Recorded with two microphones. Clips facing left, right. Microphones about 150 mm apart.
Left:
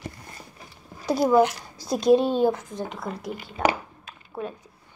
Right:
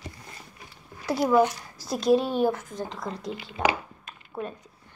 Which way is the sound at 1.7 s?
10° right (ahead or behind).